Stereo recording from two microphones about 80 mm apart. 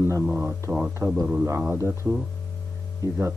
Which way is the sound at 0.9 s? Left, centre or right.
Right.